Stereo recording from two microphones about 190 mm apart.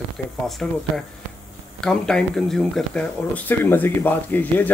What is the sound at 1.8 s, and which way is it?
Speech, 5° left (ahead or behind).